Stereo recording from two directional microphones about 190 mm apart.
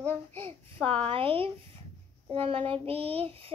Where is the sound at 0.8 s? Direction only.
30° right (ahead or behind).